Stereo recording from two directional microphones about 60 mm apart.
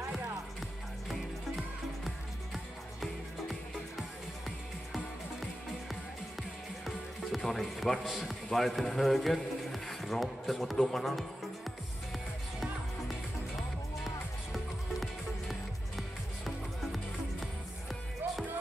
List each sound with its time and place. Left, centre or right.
2.0 s music: centre
7.3 s speech: centre
8.5 s a sound: centre
14.5 s music: centre
18.2 s music: right